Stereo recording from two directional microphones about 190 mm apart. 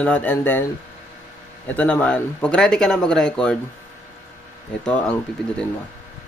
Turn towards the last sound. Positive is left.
turn(degrees=5)  # may be behind; listen again after turning